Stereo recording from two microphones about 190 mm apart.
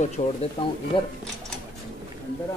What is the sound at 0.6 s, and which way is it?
Speech, 25° left (ahead or behind).